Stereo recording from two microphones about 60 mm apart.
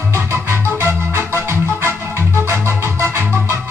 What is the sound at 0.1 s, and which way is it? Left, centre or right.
Organ, right.